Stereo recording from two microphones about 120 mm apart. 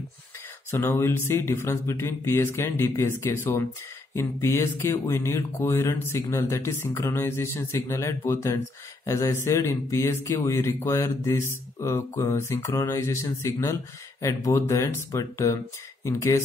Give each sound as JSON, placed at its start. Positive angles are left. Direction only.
{"t": 0.7, "sound": "speech", "side_deg": 20}